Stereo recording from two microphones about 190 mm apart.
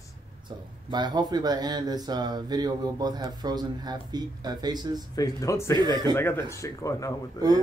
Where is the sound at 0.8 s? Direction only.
25° right (ahead or behind).